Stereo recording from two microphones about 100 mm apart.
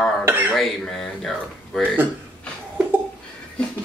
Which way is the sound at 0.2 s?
20° right (ahead or behind).